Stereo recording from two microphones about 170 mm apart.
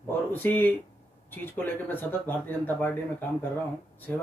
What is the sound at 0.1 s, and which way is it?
Speech, 10° left (ahead or behind).